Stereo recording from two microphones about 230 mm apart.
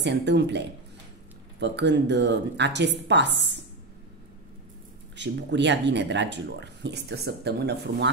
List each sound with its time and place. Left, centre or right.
0.0 s speech: right
5.1 s speech: right